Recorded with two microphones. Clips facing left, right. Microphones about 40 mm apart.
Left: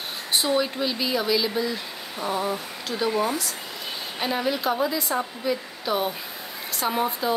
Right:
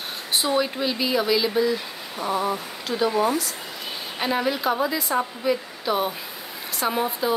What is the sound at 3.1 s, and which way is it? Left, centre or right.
Speech, centre.